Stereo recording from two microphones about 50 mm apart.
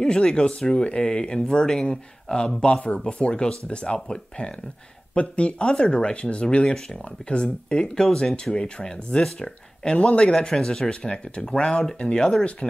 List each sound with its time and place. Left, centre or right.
0.0 s speech: centre